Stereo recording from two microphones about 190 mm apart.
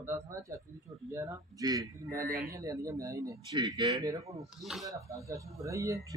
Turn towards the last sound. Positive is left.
turn(degrees=-15)  # may be behind; listen again after turning